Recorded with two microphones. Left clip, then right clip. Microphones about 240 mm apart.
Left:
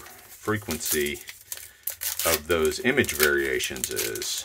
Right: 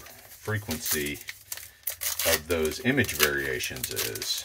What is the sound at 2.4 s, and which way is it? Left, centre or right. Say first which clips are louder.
Speech: left 4 dB; left.